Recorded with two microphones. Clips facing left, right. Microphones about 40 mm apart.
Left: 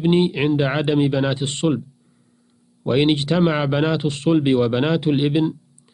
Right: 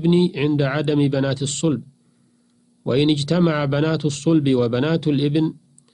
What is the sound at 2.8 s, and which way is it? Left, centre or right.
Speech, left.